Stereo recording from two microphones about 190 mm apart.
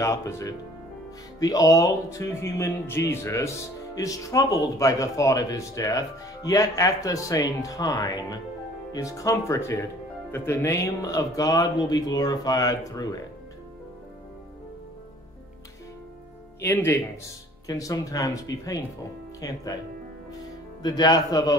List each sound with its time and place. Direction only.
0.0 s speech: 15° left (ahead or behind)
16.6 s speech: 15° left (ahead or behind)
20.8 s speech: 20° left (ahead or behind)